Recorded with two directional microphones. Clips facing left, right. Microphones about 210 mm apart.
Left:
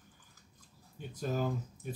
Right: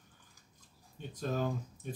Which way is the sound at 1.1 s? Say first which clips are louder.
Even; 10° left (ahead or behind).